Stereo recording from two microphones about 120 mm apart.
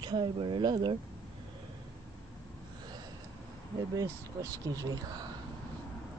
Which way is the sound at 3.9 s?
30° right (ahead or behind).